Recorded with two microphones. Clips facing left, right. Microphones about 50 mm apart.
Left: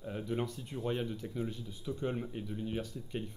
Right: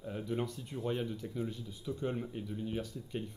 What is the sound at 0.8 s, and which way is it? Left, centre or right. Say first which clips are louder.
Speech: even; left.